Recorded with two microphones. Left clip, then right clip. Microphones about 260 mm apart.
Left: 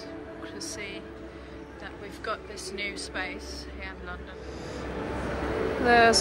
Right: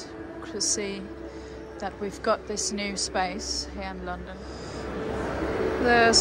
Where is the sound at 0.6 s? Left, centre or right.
Right.